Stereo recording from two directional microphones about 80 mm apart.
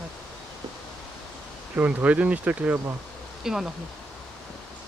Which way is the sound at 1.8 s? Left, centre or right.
Right.